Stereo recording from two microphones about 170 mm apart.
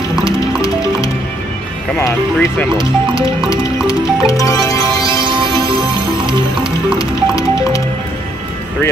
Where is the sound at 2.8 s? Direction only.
30° right (ahead or behind).